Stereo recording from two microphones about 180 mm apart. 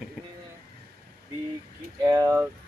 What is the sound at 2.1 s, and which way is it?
Speech, 15° right (ahead or behind).